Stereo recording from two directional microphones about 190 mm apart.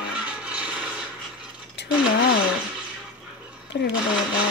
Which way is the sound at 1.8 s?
65° left (ahead or behind).